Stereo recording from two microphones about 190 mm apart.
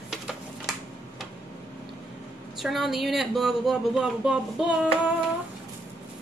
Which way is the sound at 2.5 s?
Centre (ahead or behind).